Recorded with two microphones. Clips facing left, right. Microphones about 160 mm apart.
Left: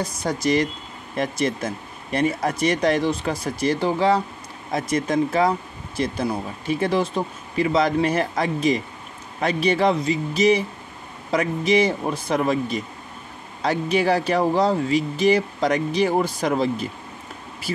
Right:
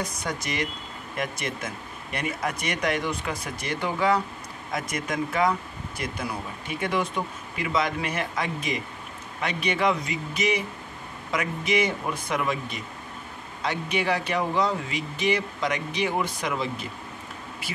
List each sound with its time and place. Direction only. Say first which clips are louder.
0.0 s speech: left 7 dB; 30° left (ahead or behind)